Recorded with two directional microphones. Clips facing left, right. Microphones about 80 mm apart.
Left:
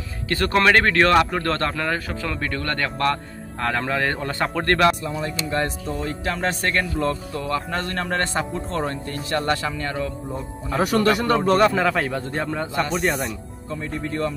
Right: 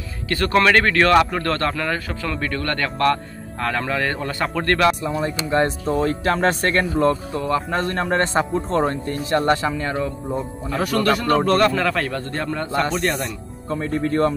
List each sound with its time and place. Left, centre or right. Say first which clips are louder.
0.3 s a man's voice: right 1 dB; left
5.0 s speech: right 4 dB; right
5.9 s speech: right 7 dB; right
6.6 s speech: right 4 dB; right
7.3 s speech: right 4 dB; centre
10.8 s a man's voice: left 1 dB; left; by 13.3 s centre
13.7 s speech: right 6 dB; right